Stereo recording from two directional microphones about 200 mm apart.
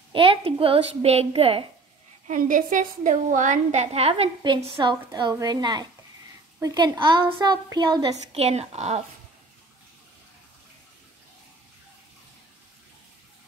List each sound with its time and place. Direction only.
0.1 s a woman's voice: 25° right (ahead or behind)
2.2 s a woman's voice: 40° right (ahead or behind)